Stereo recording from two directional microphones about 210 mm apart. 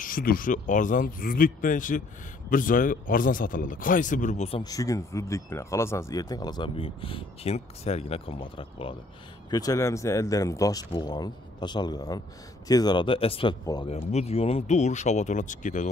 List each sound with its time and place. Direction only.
0.0 s a man's voice: 45° left (ahead or behind)